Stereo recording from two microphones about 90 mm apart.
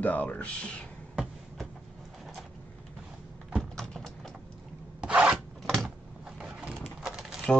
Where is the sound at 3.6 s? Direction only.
5° left (ahead or behind).